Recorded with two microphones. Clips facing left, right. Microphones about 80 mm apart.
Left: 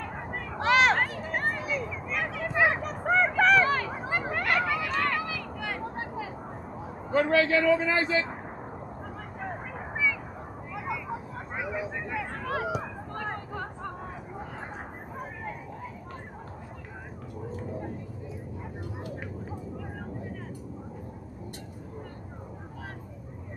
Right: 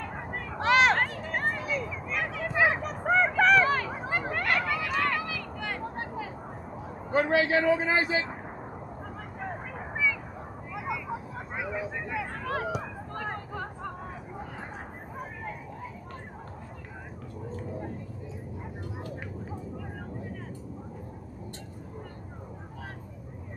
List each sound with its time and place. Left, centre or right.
0.0 s a sound: centre
7.2 s a man's voice: left
9.4 s vehicle: centre
17.6 s vehicle: centre